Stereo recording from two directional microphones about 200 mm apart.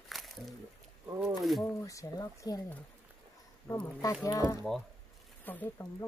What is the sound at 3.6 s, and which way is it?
Speech, 10° left (ahead or behind).